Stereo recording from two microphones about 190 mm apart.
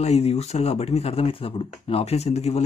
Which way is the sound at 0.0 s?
35° left (ahead or behind).